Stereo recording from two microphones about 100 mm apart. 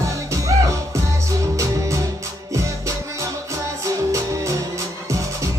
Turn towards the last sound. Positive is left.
turn(degrees=-30)  # may be behind; listen again after turning